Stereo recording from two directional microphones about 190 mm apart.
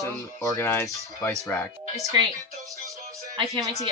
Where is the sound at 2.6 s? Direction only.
15° right (ahead or behind).